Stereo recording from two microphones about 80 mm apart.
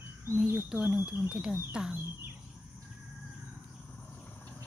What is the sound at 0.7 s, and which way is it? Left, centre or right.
Speech, centre.